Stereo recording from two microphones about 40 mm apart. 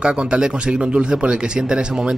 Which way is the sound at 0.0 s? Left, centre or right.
Right.